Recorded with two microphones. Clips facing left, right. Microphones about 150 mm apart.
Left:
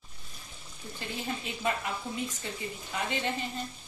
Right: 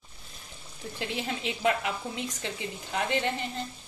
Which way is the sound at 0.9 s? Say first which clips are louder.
Right 3 dB; 80° right.